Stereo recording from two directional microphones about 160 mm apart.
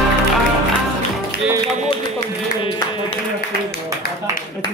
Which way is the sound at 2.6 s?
30° left (ahead or behind).